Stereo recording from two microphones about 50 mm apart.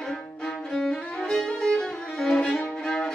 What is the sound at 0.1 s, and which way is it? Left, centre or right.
Violin, centre.